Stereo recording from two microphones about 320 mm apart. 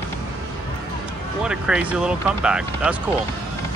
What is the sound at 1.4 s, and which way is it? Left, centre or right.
Speech, centre.